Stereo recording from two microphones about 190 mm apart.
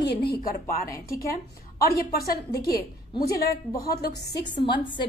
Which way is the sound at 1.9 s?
55° left (ahead or behind).